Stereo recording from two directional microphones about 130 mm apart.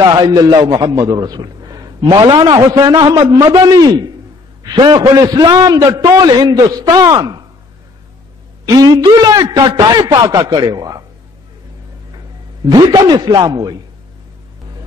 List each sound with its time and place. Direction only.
0.0 s a man's voice: 30° right (ahead or behind)
8.7 s a man's voice: 35° right (ahead or behind)
12.6 s a man's voice: 35° right (ahead or behind)